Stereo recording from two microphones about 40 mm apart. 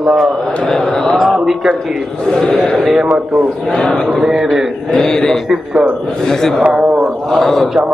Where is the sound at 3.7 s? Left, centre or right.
Left.